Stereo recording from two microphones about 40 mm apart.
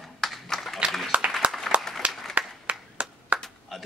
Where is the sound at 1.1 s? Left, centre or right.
Right.